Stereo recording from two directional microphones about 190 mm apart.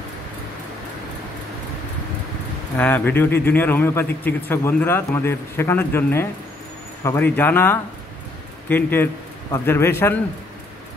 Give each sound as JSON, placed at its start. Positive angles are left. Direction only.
{"t": 2.8, "sound": "a man's voice", "side_deg": 10}